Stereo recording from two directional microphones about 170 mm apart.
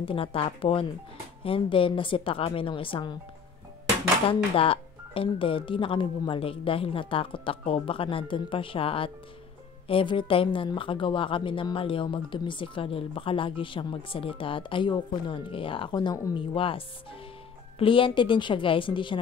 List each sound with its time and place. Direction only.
0.0 s a woman's voice: 30° left (ahead or behind)
4.3 s a woman's voice: 30° left (ahead or behind)